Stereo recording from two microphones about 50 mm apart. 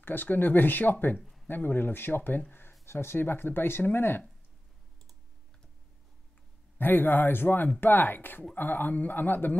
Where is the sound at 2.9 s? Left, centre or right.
Left.